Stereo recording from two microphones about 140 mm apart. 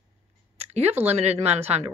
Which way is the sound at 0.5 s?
50° right (ahead or behind).